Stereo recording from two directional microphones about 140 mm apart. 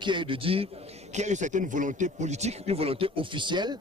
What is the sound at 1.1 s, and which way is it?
A man's voice, 55° right (ahead or behind).